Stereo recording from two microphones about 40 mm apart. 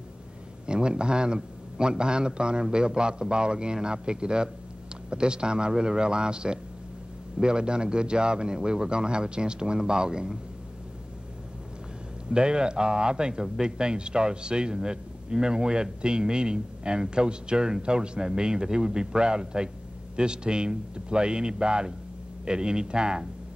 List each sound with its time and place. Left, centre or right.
0.7 s speech: right
12.3 s speech: right